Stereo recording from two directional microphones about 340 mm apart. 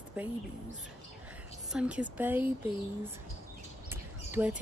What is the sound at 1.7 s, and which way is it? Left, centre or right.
Speech, centre.